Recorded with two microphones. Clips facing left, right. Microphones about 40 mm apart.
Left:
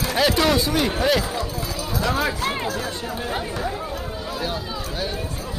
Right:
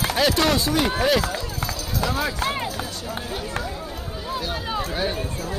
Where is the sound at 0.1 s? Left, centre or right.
Centre.